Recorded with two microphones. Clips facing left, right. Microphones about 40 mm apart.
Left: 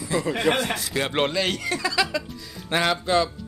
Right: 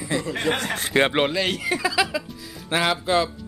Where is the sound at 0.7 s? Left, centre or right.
Right.